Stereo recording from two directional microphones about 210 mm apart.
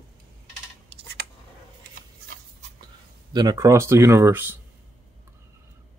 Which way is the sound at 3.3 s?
15° right (ahead or behind).